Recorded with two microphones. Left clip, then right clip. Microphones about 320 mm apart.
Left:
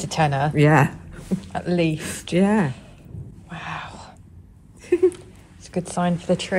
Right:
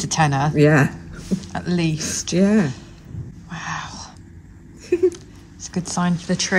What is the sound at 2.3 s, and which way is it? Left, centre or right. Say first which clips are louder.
Speech: right 1 dB; left.